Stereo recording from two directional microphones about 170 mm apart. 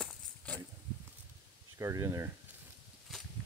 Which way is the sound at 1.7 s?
20° right (ahead or behind).